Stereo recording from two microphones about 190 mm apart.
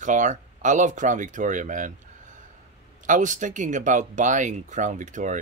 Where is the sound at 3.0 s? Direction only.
40° right (ahead or behind).